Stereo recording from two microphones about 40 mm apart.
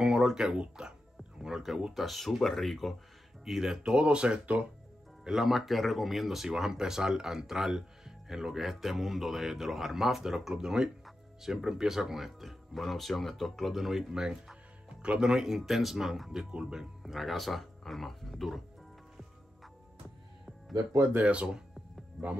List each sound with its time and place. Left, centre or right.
0.0 s a sound: centre
0.6 s speech: centre
2.0 s speech: centre
3.8 s speech: right
5.3 s speech: centre
14.1 s music: centre
15.2 s speech: centre
22.2 s speech: centre